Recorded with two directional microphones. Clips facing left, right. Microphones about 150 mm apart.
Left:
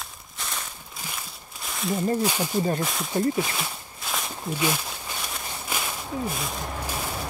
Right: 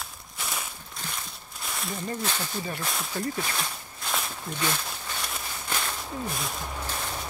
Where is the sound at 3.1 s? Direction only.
25° left (ahead or behind).